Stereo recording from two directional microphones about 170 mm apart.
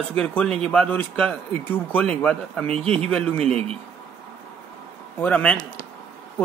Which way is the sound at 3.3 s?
35° right (ahead or behind).